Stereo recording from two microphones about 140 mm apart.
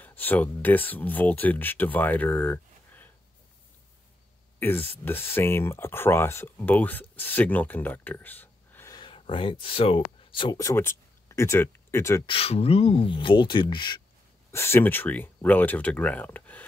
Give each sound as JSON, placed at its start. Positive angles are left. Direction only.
{"t": 0.0, "sound": "speech", "side_deg": 15}
{"t": 4.6, "sound": "speech", "side_deg": 15}
{"t": 8.9, "sound": "speech", "side_deg": 35}
{"t": 10.5, "sound": "speech", "side_deg": 20}
{"t": 12.3, "sound": "speech", "side_deg": 45}
{"t": 14.5, "sound": "speech", "side_deg": 20}